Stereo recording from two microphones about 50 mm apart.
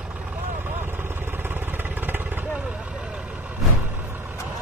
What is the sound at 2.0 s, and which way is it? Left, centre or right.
Vehicle, right.